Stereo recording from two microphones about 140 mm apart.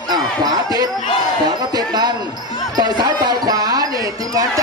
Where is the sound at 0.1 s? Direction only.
25° right (ahead or behind).